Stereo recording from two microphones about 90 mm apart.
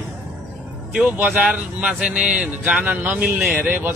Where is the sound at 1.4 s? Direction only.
10° right (ahead or behind).